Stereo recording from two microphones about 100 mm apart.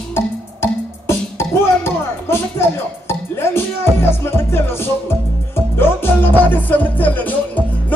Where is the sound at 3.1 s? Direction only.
25° left (ahead or behind).